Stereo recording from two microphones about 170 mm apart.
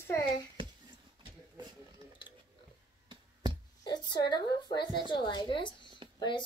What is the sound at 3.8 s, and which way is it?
A woman's voice, 25° left (ahead or behind).